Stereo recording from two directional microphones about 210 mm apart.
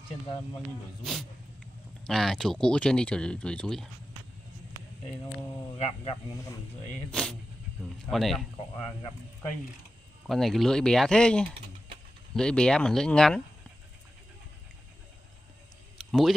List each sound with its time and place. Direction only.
1.0 s speech: centre (ahead or behind)
5.8 s speech: 30° left (ahead or behind)
7.1 s speech: 5° left (ahead or behind)
10.2 s speech: centre (ahead or behind)
16.0 s a sound: centre (ahead or behind)